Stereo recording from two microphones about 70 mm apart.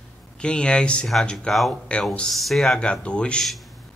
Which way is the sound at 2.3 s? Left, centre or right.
Centre.